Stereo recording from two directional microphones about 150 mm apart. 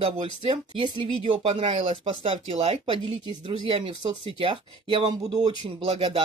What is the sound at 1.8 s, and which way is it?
Speech, 50° right (ahead or behind).